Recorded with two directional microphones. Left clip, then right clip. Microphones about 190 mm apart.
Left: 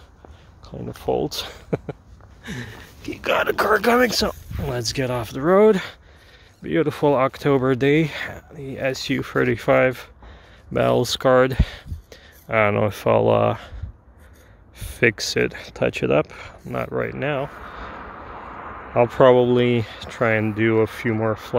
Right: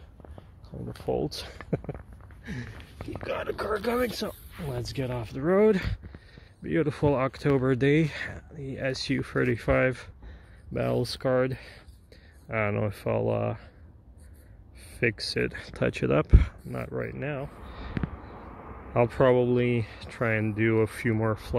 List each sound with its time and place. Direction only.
1.0 s speech: 15° left (ahead or behind)
3.1 s speech: 35° left (ahead or behind); by 10.0 s 5° left (ahead or behind)
10.7 s speech: 25° left (ahead or behind)
15.0 s speech: 20° left (ahead or behind)
15.5 s speech: centre (ahead or behind)
16.6 s speech: 15° left (ahead or behind)
17.7 s a sound: 40° left (ahead or behind)
18.9 s speech: 10° left (ahead or behind)